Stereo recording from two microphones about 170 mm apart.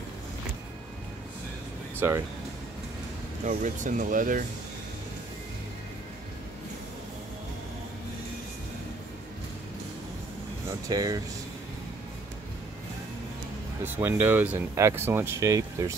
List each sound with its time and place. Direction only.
2.0 s speech: 15° right (ahead or behind)
3.4 s speech: 50° right (ahead or behind)
10.7 s speech: 20° right (ahead or behind)
13.8 s speech: 10° right (ahead or behind)